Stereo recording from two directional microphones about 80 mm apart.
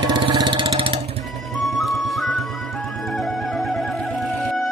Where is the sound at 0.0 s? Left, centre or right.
Right.